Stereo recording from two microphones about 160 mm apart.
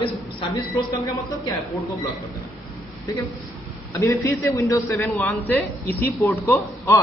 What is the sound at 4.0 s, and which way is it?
A man's voice, 20° left (ahead or behind).